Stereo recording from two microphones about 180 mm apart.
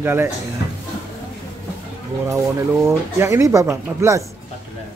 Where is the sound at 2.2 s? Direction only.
15° right (ahead or behind).